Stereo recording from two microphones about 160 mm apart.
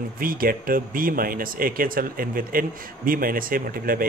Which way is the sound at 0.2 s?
65° right (ahead or behind).